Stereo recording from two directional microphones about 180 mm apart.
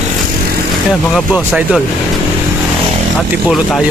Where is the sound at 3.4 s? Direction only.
Centre (ahead or behind).